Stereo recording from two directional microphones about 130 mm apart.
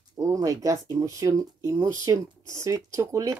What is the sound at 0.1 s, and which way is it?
A child's voice, 25° right (ahead or behind).